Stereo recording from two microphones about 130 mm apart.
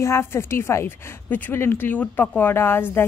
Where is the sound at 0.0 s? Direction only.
20° left (ahead or behind).